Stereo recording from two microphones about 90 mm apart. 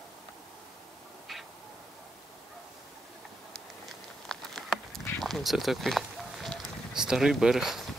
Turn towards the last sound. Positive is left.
turn(degrees=-5)  # may be behind; listen again after turning